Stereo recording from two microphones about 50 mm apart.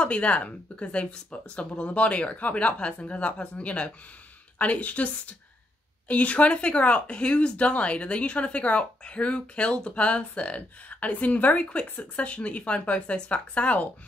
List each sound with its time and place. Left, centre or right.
0.0 s speech: left